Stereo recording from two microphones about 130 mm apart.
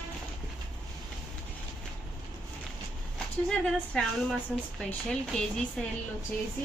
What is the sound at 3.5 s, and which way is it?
A woman's voice, 5° left (ahead or behind).